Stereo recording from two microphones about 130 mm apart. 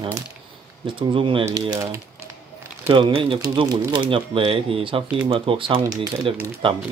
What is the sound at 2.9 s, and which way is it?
Speech, 40° right (ahead or behind).